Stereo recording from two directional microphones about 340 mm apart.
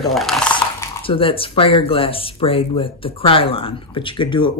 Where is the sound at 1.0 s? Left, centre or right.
Centre.